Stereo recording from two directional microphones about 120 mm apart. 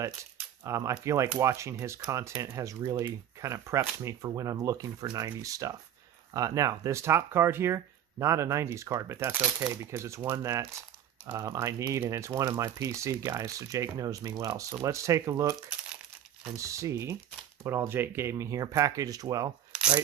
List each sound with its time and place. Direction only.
0.0 s speech: 25° right (ahead or behind)